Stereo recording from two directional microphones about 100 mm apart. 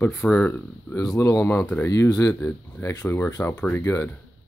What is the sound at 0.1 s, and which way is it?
Speech, 10° left (ahead or behind).